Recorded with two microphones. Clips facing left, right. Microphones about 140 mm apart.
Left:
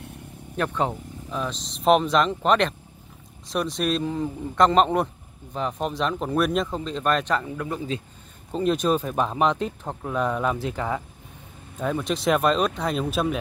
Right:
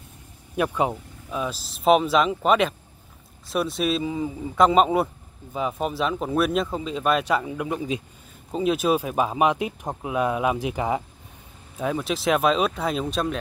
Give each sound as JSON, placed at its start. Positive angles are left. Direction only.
{"t": 0.6, "sound": "a man's voice", "side_deg": -10}
{"t": 11.8, "sound": "a man's voice", "side_deg": -5}